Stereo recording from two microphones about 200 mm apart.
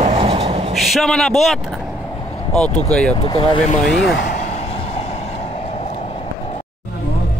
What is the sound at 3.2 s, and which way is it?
Speech, 25° left (ahead or behind).